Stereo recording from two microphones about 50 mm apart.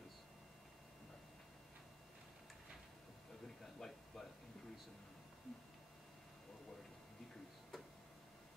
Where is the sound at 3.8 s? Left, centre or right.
Centre.